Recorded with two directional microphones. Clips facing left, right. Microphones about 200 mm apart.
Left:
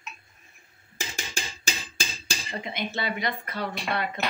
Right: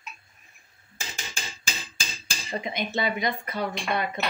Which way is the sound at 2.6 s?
20° right (ahead or behind).